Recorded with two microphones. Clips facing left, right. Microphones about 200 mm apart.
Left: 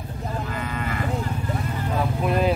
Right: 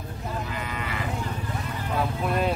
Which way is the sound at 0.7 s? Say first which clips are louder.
Left 5 dB; 45° left (ahead or behind).